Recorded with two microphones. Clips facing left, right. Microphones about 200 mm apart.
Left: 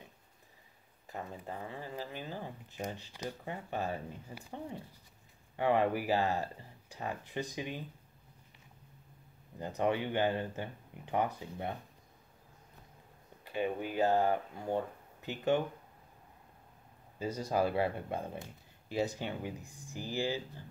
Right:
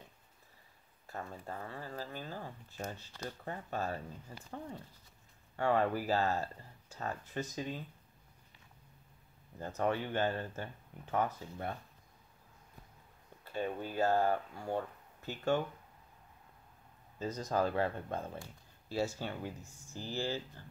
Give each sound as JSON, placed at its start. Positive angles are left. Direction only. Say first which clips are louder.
{"t": 1.0, "sound": "speech", "louder": "left 1 dB", "side_deg": 15}
{"t": 9.6, "sound": "speech", "louder": "left 2 dB", "side_deg": 15}
{"t": 13.4, "sound": "speech", "louder": "left 3 dB", "side_deg": 15}
{"t": 17.2, "sound": "speech", "louder": "left 2 dB", "side_deg": 10}